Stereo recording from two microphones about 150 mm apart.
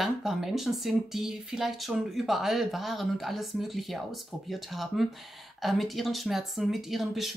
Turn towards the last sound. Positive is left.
turn(degrees=0)  # may be behind; listen again after turning